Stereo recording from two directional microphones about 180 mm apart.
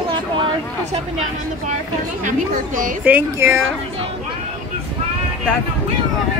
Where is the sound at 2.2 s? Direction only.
45° right (ahead or behind).